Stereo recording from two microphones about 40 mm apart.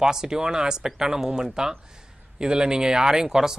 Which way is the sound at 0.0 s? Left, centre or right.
Centre.